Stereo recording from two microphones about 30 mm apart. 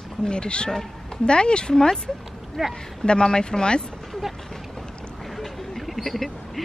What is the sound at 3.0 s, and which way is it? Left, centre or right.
Speech, left.